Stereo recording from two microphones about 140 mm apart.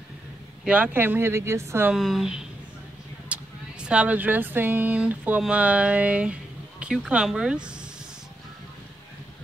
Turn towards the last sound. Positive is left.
turn(degrees=-5)  # may be behind; listen again after turning